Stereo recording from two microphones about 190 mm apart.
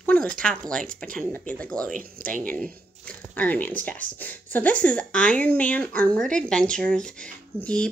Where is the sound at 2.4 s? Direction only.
5° left (ahead or behind).